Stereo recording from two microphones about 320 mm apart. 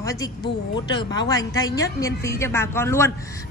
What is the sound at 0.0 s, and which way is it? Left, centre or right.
A woman's voice, centre.